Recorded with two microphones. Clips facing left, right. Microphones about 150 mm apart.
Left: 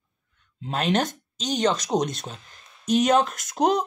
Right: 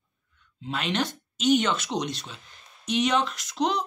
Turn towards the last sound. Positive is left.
turn(degrees=50)  # may be behind; listen again after turning